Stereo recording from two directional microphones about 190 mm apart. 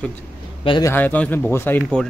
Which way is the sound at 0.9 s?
10° left (ahead or behind).